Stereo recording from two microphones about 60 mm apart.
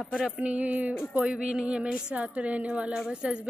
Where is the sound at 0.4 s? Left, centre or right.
Right.